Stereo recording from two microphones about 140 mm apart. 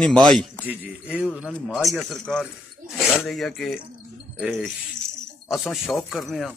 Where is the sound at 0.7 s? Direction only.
10° right (ahead or behind).